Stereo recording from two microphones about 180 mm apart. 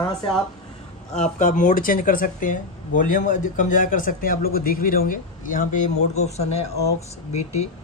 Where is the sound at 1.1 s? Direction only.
40° left (ahead or behind).